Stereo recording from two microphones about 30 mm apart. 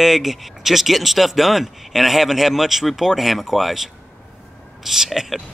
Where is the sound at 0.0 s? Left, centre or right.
Centre.